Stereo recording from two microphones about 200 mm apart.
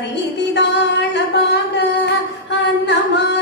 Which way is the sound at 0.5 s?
60° left (ahead or behind).